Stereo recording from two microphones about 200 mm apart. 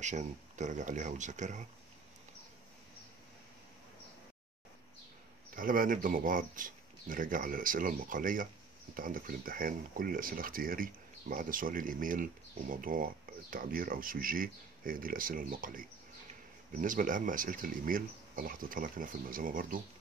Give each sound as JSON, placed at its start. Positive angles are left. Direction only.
{"t": 0.0, "sound": "speech", "side_deg": -35}
{"t": 5.5, "sound": "speech", "side_deg": -45}